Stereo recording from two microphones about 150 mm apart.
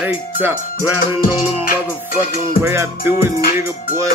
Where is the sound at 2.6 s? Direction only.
15° right (ahead or behind).